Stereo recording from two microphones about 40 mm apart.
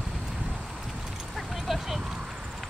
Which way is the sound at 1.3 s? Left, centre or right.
Centre.